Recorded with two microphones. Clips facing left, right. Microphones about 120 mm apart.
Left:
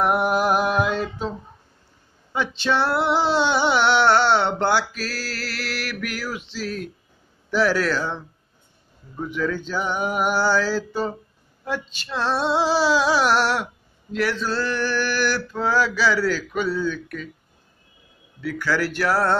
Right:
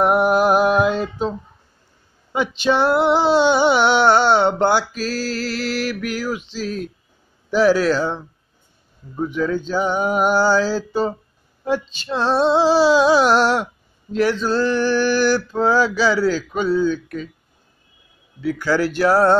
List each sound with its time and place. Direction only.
0.0 s a sound: 20° right (ahead or behind)
2.3 s music: 15° right (ahead or behind)
9.1 s male singing: 20° right (ahead or behind)
18.4 s male singing: 20° right (ahead or behind)